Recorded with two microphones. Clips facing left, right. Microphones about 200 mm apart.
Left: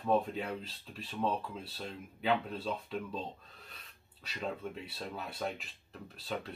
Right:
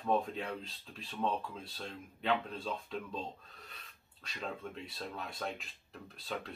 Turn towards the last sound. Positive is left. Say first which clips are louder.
# left 2 dB
turn(degrees=5)  # may be behind; listen again after turning